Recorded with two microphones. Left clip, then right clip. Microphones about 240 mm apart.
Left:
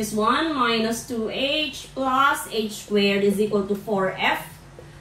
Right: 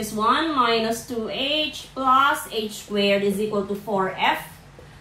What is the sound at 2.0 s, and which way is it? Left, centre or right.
A woman's voice, centre.